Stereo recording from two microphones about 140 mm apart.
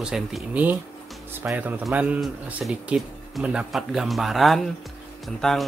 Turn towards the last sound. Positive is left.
turn(degrees=0)  # may be behind; listen again after turning